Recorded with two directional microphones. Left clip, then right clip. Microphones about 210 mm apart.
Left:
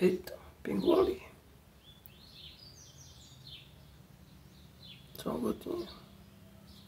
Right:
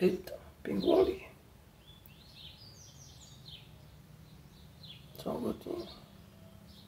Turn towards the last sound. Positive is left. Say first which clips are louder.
# left 1 dB
turn(degrees=20)  # may be behind; listen again after turning